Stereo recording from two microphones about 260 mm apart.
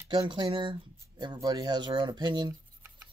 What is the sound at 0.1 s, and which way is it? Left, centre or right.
Speech, centre.